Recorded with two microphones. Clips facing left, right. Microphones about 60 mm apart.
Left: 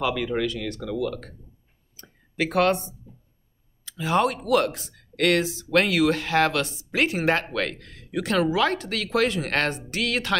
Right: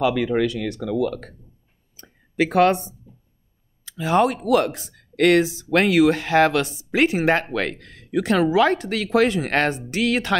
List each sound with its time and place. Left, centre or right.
0.3 s speech: centre
2.0 s a sound: centre
4.0 s speech: centre